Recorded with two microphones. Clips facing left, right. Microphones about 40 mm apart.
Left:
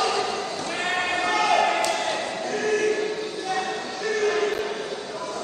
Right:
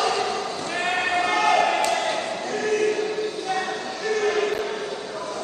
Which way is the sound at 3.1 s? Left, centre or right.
Right.